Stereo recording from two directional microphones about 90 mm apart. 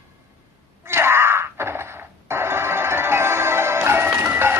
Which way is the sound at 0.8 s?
25° right (ahead or behind).